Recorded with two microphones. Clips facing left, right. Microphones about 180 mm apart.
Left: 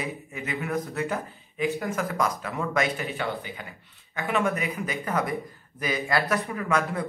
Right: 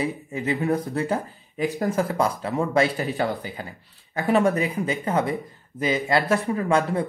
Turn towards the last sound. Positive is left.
turn(degrees=-30)  # may be behind; listen again after turning